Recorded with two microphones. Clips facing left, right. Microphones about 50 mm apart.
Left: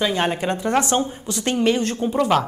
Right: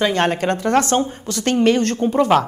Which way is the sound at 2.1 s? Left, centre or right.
Centre.